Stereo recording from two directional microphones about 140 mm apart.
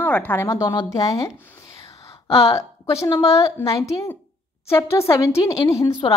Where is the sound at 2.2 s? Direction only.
45° left (ahead or behind).